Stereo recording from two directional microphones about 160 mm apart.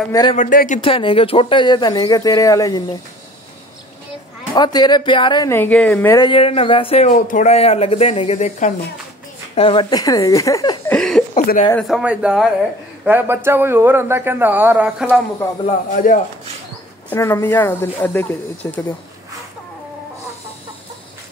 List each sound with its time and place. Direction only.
0.1 s speech: 30° left (ahead or behind)
0.4 s speech: 55° left (ahead or behind)
0.7 s speech: 35° left (ahead or behind)
4.6 s speech: 25° left (ahead or behind)
5.5 s speech: 10° left (ahead or behind)
6.1 s speech: 30° left (ahead or behind)
7.2 s speech: 55° left (ahead or behind)
7.5 s speech: 40° left (ahead or behind)
9.6 s speech: 30° left (ahead or behind)
10.9 s a sound: 5° left (ahead or behind)
11.3 s speech: 50° left (ahead or behind)
11.9 s speech: 5° right (ahead or behind)
15.9 s speech: 55° left (ahead or behind)
17.1 s speech: 15° left (ahead or behind)